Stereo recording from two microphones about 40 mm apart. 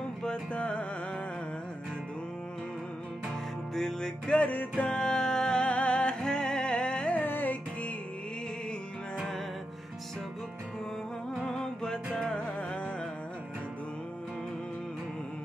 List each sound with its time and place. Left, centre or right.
0.5 s music: left
3.7 s music: centre
4.3 s music: left
7.2 s music: left
11.4 s music: centre